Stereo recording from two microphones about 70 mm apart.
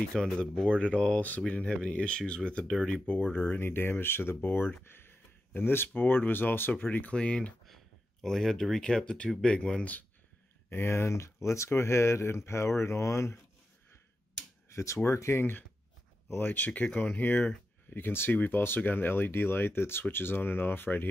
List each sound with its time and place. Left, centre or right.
0.0 s speech: centre
3.3 s speech: left
7.6 s speech: centre
10.7 s speech: left
14.7 s speech: left
16.3 s speech: left